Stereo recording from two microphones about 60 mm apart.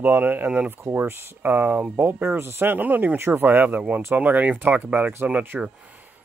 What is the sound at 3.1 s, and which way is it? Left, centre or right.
Speech, right.